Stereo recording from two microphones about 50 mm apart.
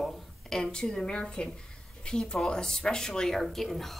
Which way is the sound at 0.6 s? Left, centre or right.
Centre.